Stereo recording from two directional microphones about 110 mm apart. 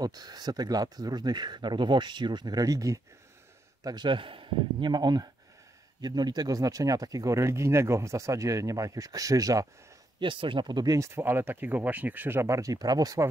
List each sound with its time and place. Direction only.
0.0 s speech: 35° right (ahead or behind)
10.2 s speech: 50° right (ahead or behind)